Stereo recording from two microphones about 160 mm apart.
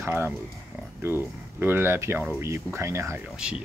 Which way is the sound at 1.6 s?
15° right (ahead or behind).